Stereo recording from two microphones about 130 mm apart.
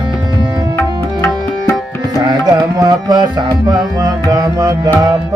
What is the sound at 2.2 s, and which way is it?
Music, 30° right (ahead or behind).